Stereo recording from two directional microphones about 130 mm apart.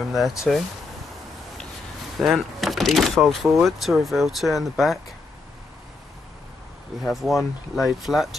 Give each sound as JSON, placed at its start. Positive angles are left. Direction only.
{"t": 0.1, "sound": "speech", "side_deg": 0}
{"t": 2.1, "sound": "speech", "side_deg": 0}
{"t": 7.0, "sound": "speech", "side_deg": 0}